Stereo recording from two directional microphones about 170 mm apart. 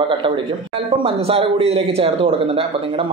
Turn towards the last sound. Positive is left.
turn(degrees=-30)  # may be behind; listen again after turning